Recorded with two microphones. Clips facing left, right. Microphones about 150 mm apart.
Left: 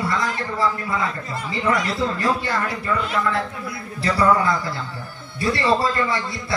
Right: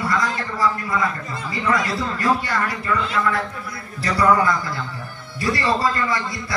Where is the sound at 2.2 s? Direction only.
25° left (ahead or behind).